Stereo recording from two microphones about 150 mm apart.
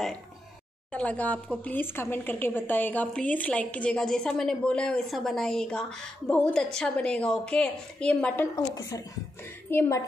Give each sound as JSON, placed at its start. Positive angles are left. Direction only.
{"t": 0.9, "sound": "speech", "side_deg": 10}
{"t": 9.7, "sound": "speech", "side_deg": 15}